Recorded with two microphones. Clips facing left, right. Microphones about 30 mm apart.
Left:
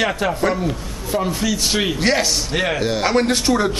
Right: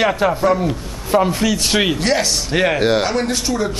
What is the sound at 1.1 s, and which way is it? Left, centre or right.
Speech, right.